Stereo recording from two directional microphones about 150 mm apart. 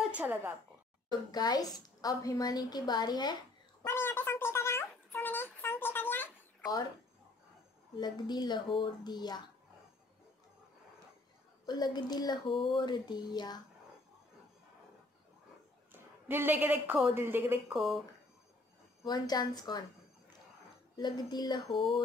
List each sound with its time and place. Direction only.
0.0 s a woman's voice: 10° right (ahead or behind)
1.3 s a woman's voice: 25° left (ahead or behind)
3.8 s a sound: 15° left (ahead or behind)
6.6 s speech: 25° left (ahead or behind)
8.0 s a woman's voice: 30° left (ahead or behind)
11.6 s a woman's voice: 25° left (ahead or behind)
15.9 s a woman's voice: 15° right (ahead or behind)
17.7 s speech: centre (ahead or behind)
19.0 s a woman's voice: 25° left (ahead or behind)
20.9 s a woman's voice: 30° left (ahead or behind)